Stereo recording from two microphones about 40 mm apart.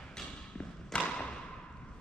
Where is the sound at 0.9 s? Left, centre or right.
Left.